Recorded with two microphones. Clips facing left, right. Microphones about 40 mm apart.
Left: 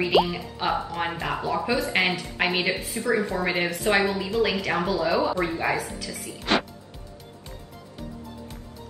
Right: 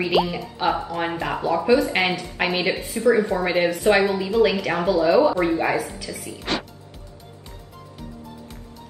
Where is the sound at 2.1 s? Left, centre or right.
Centre.